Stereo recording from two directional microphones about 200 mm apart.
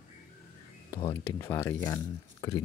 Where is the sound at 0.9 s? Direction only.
20° left (ahead or behind).